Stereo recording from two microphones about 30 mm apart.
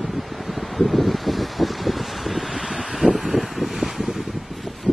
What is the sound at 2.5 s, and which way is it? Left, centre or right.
Wind, centre.